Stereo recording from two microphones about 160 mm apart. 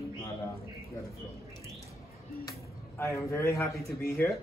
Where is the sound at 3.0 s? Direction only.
20° left (ahead or behind).